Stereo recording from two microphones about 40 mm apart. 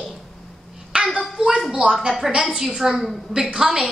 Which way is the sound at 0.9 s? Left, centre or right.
Right.